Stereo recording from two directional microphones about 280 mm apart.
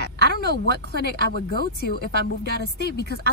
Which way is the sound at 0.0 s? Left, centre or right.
Left.